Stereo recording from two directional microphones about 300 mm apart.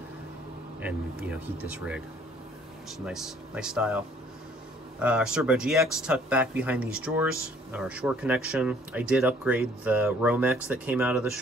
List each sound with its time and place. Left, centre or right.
0.7 s speech: centre
3.1 s speech: centre